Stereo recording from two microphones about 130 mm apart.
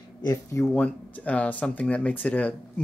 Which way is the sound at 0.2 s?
25° left (ahead or behind).